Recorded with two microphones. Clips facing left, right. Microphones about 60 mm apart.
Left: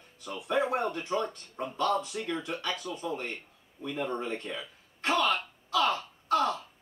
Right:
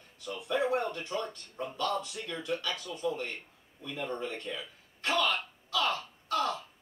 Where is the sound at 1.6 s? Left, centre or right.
Left.